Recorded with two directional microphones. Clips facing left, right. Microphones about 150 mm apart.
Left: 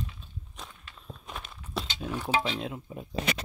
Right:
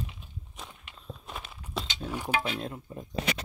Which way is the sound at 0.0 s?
20° right (ahead or behind).